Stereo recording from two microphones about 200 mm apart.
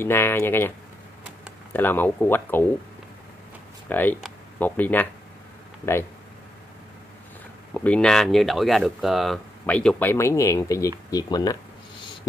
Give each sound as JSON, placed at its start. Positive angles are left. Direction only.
{"t": 0.0, "sound": "speech", "side_deg": 10}
{"t": 3.9, "sound": "speech", "side_deg": 10}
{"t": 7.7, "sound": "speech", "side_deg": 5}